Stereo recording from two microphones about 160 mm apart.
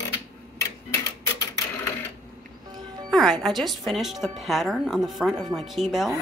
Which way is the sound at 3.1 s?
Centre (ahead or behind).